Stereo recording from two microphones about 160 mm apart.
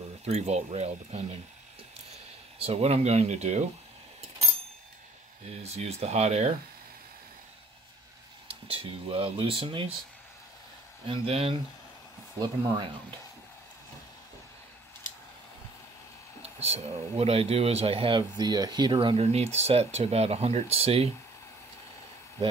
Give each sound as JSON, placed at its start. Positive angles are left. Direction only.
{"t": 0.2, "sound": "speech", "side_deg": -40}
{"t": 2.6, "sound": "speech", "side_deg": -40}
{"t": 5.6, "sound": "speech", "side_deg": -40}
{"t": 8.6, "sound": "speech", "side_deg": -35}
{"t": 11.1, "sound": "speech", "side_deg": -35}
{"t": 16.4, "sound": "speech", "side_deg": -40}